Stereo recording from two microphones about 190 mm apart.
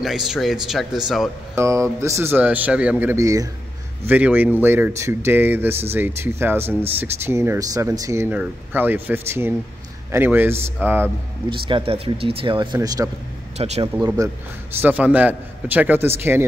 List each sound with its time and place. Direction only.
0.0 s speech: centre (ahead or behind)
1.5 s speech: 15° right (ahead or behind)
11.6 s speech: 30° right (ahead or behind)
13.6 s speech: 35° right (ahead or behind)
13.9 s speech: 20° right (ahead or behind)